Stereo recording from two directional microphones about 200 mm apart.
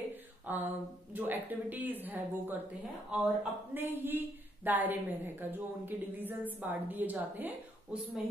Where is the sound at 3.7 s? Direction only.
10° right (ahead or behind).